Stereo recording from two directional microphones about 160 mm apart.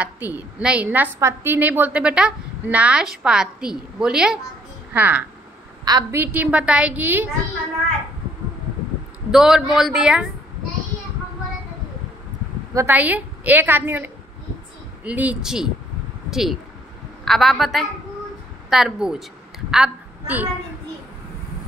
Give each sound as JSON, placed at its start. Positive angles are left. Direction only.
{"t": 0.0, "sound": "a woman's voice", "side_deg": -10}
{"t": 5.9, "sound": "a woman's voice", "side_deg": -25}
{"t": 6.2, "sound": "a woman's voice", "side_deg": -10}
{"t": 9.3, "sound": "a man's voice", "side_deg": -5}
{"t": 12.7, "sound": "a woman's voice", "side_deg": -10}